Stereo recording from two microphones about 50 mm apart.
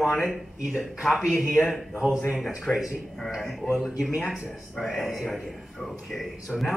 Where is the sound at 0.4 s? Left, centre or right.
Centre.